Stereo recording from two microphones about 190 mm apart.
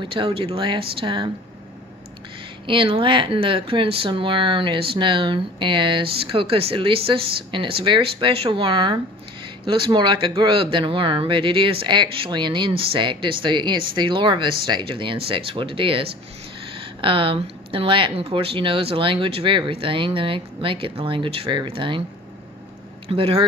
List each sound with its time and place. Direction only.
0.1 s speech: 30° right (ahead or behind)
2.6 s speech: 25° right (ahead or behind)
23.0 s speech: 30° right (ahead or behind)